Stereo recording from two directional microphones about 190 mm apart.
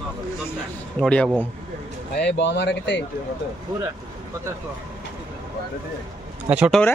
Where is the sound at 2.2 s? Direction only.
70° left (ahead or behind).